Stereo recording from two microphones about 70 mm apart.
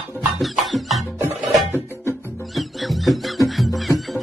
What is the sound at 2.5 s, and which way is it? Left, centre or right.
Music, centre.